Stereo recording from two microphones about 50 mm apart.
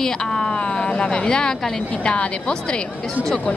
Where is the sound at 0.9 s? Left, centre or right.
Left.